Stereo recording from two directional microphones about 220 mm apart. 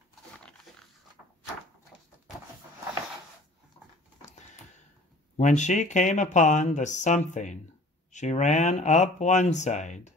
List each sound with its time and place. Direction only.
5.4 s speech: 35° left (ahead or behind)